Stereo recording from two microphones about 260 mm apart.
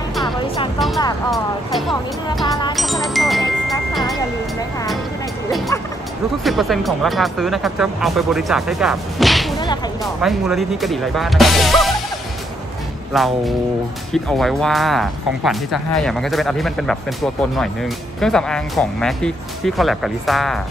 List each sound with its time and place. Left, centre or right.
1.3 s speech: centre
2.4 s speech: centre
2.7 s music: centre
4.2 s speech: centre
6.4 s speech: centre
13.1 s speech: centre